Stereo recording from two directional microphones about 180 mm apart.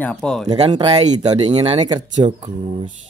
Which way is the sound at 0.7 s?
30° right (ahead or behind).